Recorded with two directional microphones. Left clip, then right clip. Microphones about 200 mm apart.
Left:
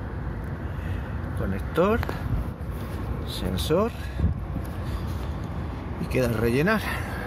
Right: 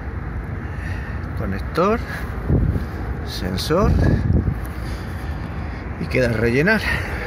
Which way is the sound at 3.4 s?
15° left (ahead or behind).